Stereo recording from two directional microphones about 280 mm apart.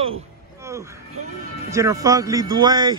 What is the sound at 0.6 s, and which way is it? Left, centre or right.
A man's voice, centre.